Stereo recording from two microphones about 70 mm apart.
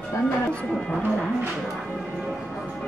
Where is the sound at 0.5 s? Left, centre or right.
Centre.